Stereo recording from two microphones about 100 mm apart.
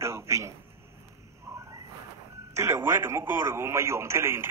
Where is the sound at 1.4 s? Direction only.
30° right (ahead or behind).